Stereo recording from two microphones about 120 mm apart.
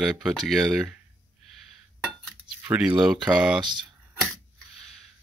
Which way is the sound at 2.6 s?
10° right (ahead or behind).